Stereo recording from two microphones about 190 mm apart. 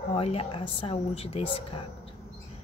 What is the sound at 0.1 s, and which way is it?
Speech, 30° left (ahead or behind).